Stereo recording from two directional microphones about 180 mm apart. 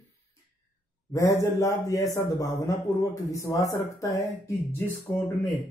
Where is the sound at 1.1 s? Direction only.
20° left (ahead or behind).